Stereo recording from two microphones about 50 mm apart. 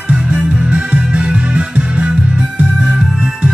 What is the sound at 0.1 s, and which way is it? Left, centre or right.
Music, right.